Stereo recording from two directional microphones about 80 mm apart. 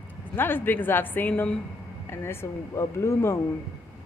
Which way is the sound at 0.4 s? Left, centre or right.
Left.